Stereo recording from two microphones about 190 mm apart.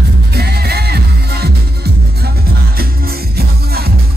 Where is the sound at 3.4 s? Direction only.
55° right (ahead or behind).